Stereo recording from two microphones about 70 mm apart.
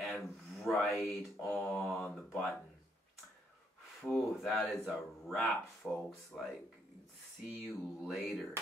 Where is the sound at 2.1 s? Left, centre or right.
Centre.